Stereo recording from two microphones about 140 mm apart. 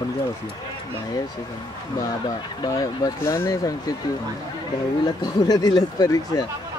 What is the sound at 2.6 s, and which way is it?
Speech, 25° left (ahead or behind).